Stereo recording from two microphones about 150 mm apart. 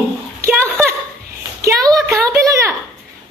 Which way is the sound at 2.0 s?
20° right (ahead or behind).